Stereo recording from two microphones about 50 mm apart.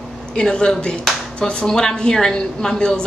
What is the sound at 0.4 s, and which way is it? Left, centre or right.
A woman's voice, centre.